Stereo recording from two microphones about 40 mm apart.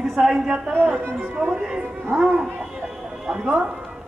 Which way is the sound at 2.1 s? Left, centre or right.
Centre.